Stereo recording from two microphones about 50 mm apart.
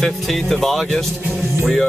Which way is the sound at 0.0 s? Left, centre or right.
Centre.